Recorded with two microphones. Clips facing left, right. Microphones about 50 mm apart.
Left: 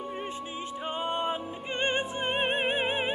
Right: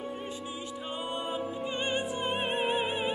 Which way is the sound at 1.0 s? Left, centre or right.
Left.